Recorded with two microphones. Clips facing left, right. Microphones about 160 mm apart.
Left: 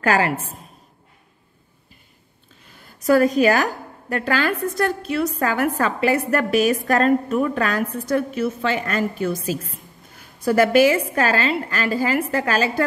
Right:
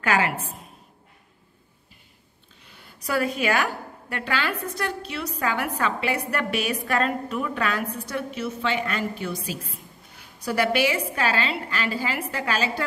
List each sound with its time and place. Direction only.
0.0 s a woman's voice: 40° left (ahead or behind)
2.6 s a woman's voice: 45° left (ahead or behind)